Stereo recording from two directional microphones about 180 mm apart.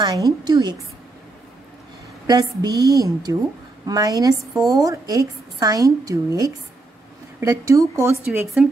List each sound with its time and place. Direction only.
0.0 s a woman's voice: 20° right (ahead or behind)
2.2 s a woman's voice: 20° right (ahead or behind)